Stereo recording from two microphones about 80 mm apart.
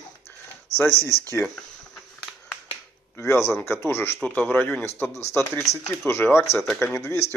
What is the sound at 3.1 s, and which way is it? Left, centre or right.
Speech, left.